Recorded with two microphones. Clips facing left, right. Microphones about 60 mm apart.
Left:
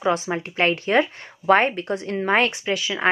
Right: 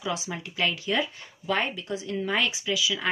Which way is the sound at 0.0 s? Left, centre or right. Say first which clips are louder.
Left 9 dB; left.